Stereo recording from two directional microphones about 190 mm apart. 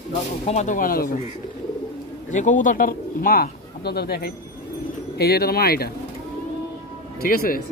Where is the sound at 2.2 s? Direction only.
40° left (ahead or behind).